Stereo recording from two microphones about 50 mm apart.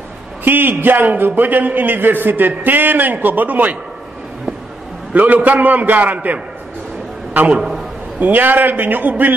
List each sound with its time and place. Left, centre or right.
0.4 s a man's voice: right
5.1 s a man's voice: right
8.2 s a man's voice: right